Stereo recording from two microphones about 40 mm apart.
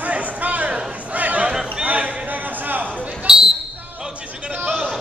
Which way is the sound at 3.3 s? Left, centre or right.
Centre.